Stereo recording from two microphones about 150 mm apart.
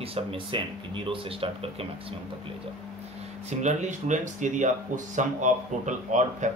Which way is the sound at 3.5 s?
50° right (ahead or behind).